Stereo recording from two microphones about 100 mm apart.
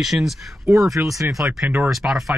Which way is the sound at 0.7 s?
30° right (ahead or behind).